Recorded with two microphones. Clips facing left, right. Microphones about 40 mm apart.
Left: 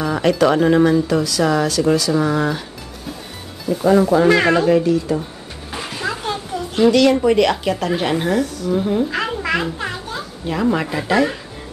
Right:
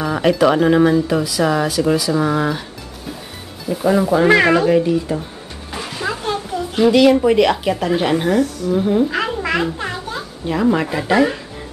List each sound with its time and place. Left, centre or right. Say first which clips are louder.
0.0 s speech: right 1 dB; centre
3.6 s speech: left 2 dB; centre
4.8 s speech: left 1 dB; centre
5.7 s music: right 1 dB; centre
7.2 s speech: right 1 dB; centre